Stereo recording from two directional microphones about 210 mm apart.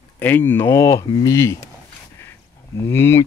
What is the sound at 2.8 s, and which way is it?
Speech, 10° left (ahead or behind).